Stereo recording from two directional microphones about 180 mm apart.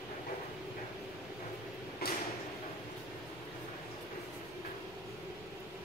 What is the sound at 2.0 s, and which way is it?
Mechanisms, 60° left (ahead or behind).